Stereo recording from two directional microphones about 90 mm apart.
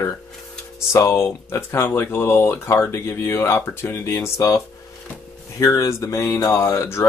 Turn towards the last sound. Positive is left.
turn(degrees=30)  # may be behind; listen again after turning